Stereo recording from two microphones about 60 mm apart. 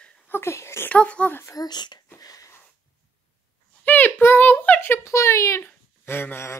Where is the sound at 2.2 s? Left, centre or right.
Left.